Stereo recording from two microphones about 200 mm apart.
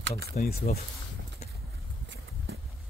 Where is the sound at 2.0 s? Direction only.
60° right (ahead or behind).